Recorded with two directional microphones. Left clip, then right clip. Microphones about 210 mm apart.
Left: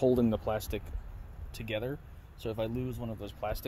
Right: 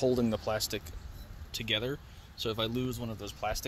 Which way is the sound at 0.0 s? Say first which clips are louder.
Left 1 dB; 15° left (ahead or behind).